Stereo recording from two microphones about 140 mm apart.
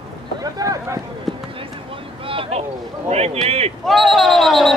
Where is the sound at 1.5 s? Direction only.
40° right (ahead or behind).